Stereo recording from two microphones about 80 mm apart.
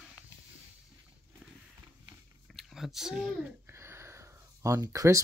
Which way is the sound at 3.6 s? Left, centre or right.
Right.